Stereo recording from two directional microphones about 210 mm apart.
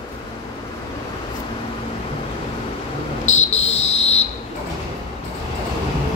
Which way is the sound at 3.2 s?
30° left (ahead or behind).